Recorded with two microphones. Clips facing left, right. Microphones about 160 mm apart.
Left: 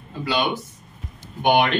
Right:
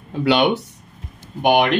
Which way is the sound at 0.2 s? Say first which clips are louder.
Right 7 dB; 65° right (ahead or behind).